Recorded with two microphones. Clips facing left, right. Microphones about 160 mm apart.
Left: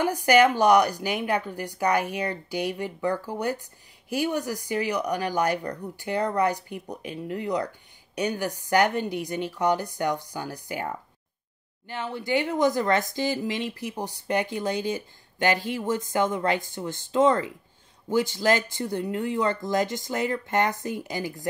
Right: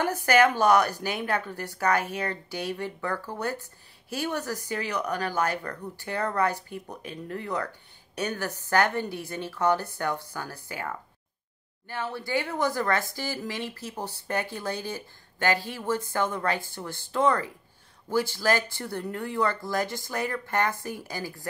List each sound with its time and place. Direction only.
0.0 s speech: 15° left (ahead or behind)